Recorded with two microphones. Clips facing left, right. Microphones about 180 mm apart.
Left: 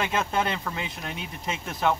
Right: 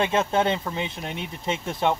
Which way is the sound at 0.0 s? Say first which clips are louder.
Right 4 dB; 25° right (ahead or behind).